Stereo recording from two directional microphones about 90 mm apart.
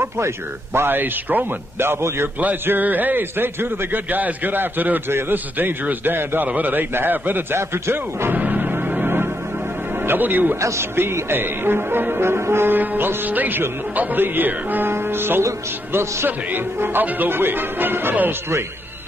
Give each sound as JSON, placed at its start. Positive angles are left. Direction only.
{"t": 0.7, "sound": "speech", "side_deg": -25}